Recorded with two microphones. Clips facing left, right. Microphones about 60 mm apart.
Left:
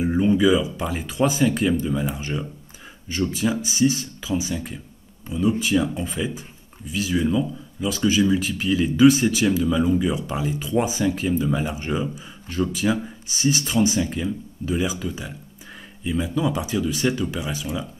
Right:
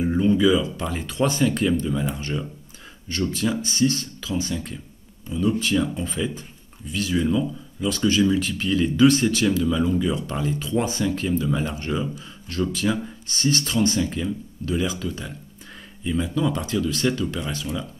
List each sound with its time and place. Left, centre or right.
0.0 s speech: centre